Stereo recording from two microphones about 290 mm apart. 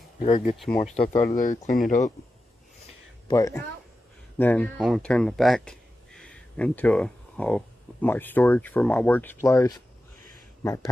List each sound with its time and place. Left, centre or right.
0.2 s speech: left
3.3 s speech: centre